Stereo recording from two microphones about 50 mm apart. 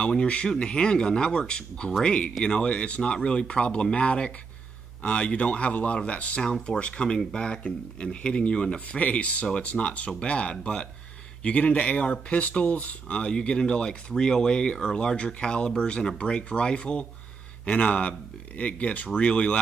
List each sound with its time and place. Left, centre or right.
0.1 s speech: left
11.4 s speech: left